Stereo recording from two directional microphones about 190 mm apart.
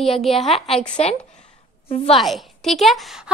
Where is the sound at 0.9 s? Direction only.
35° left (ahead or behind).